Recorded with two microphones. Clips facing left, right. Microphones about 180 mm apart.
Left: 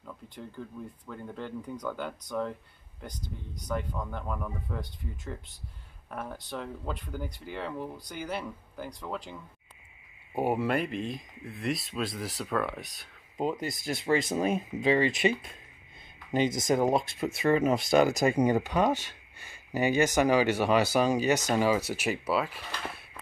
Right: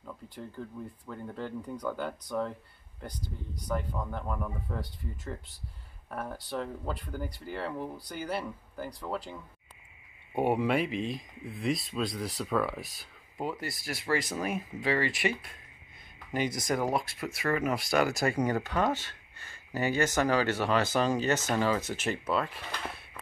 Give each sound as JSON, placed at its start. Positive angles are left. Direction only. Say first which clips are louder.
{"t": 0.0, "sound": "speech", "louder": "right 1 dB", "side_deg": -5}
{"t": 3.6, "sound": "speech", "louder": "even", "side_deg": -5}
{"t": 13.4, "sound": "speech", "louder": "left 4 dB", "side_deg": 20}